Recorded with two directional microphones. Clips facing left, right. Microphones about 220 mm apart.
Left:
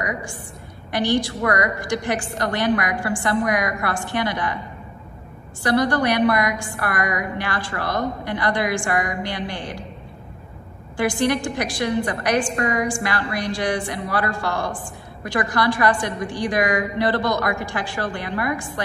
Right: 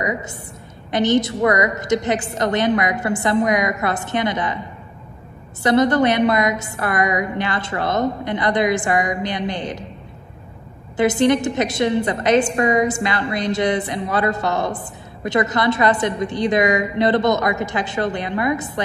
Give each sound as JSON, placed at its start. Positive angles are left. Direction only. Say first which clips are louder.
{"t": 0.0, "sound": "a woman's voice", "louder": "right 4 dB", "side_deg": -20}
{"t": 5.6, "sound": "a woman's voice", "louder": "right 4 dB", "side_deg": -20}
{"t": 11.0, "sound": "a woman's voice", "louder": "right 5 dB", "side_deg": -20}